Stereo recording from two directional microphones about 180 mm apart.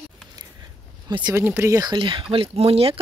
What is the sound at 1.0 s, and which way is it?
Speech, 25° right (ahead or behind).